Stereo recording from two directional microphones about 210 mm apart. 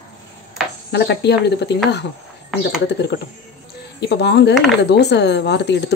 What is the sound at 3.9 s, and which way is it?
Speech, 55° left (ahead or behind).